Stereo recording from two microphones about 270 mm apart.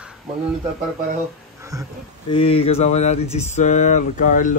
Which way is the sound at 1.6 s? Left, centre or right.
Centre.